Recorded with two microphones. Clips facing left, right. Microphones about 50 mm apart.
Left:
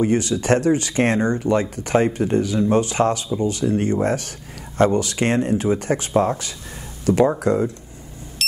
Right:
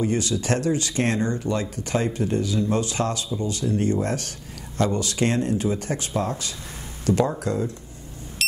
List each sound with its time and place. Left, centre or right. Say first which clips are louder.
0.0 s speech: left 5 dB; left